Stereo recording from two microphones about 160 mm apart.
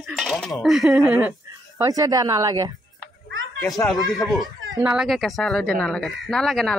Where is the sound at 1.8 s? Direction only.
20° right (ahead or behind).